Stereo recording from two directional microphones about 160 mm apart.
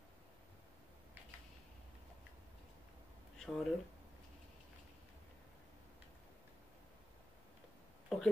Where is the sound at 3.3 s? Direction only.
5° left (ahead or behind).